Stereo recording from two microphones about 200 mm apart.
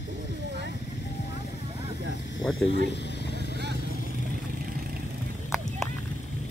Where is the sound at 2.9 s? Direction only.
60° left (ahead or behind).